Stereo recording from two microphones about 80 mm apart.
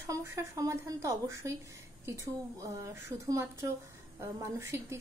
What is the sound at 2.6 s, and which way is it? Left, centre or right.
A woman's voice, right.